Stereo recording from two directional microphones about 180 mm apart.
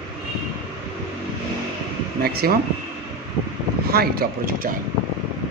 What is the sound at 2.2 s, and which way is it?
Speech, 60° right (ahead or behind).